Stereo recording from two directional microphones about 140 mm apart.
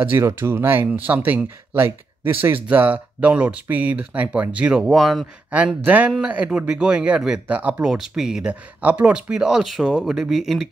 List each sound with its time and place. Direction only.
0.0 s speech: 15° right (ahead or behind)